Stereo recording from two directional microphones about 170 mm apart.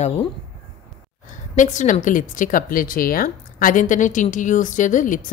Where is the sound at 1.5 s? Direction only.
50° left (ahead or behind).